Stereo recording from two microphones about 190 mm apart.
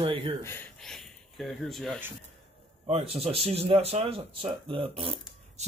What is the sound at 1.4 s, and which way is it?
Speech, centre (ahead or behind).